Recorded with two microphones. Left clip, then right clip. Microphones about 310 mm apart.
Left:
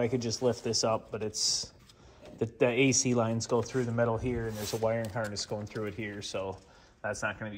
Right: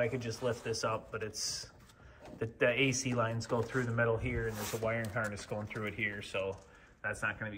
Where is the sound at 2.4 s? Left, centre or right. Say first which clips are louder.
Left 3 dB; centre.